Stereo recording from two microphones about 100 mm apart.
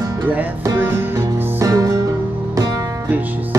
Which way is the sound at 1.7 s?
35° right (ahead or behind).